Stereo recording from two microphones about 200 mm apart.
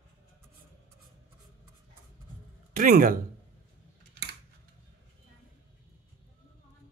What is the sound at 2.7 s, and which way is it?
Speech, 45° right (ahead or behind).